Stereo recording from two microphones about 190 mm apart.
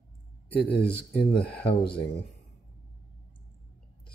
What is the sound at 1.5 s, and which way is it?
Speech, 5° left (ahead or behind).